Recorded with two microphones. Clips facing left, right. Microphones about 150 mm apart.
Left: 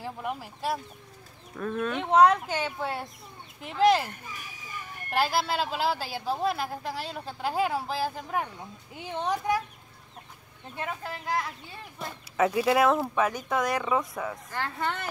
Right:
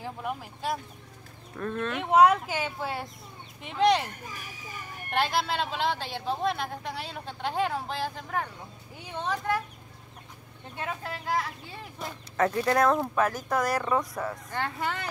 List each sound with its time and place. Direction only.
0.0 s speech: centre (ahead or behind)
5.1 s speech: 5° left (ahead or behind)
10.8 s speech: centre (ahead or behind)